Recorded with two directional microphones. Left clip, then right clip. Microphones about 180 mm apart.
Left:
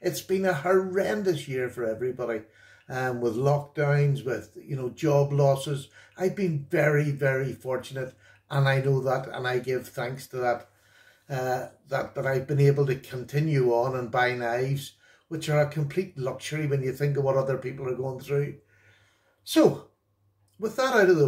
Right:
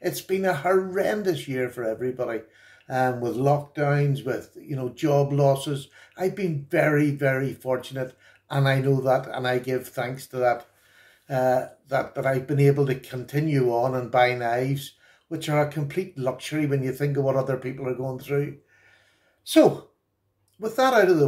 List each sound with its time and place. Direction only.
0.0 s speech: 35° right (ahead or behind)
20.6 s speech: 35° right (ahead or behind)